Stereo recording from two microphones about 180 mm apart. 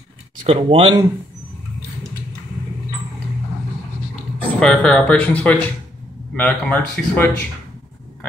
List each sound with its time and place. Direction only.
0.4 s speech: 30° right (ahead or behind)
4.1 s speech: 5° left (ahead or behind)